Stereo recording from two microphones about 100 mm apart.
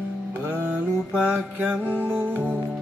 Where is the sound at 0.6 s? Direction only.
10° right (ahead or behind).